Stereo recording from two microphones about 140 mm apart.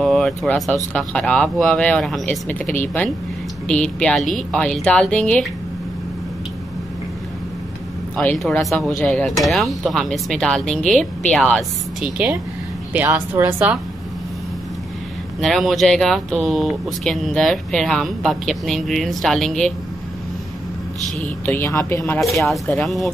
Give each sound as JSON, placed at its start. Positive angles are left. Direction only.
{"t": 0.0, "sound": "a sound", "side_deg": 0}
{"t": 0.9, "sound": "speech", "side_deg": 5}
{"t": 8.4, "sound": "speech", "side_deg": 0}
{"t": 12.9, "sound": "a woman's voice", "side_deg": -15}
{"t": 15.4, "sound": "speech", "side_deg": 0}
{"t": 21.2, "sound": "speech", "side_deg": 15}
{"t": 22.5, "sound": "speech", "side_deg": 5}